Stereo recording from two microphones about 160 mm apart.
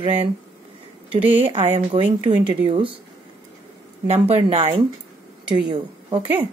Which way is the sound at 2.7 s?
35° right (ahead or behind).